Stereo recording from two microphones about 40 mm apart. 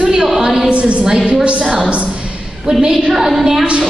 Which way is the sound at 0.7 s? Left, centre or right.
Right.